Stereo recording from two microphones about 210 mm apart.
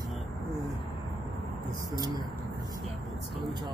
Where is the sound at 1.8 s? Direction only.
20° right (ahead or behind).